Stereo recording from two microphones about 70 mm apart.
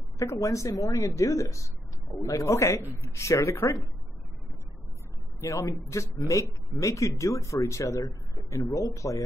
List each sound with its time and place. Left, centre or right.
0.2 s speech: left
5.4 s speech: left